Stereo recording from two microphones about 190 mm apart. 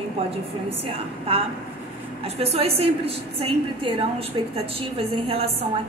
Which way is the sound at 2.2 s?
30° right (ahead or behind).